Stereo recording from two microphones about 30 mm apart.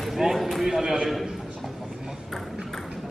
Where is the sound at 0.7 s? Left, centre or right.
Centre.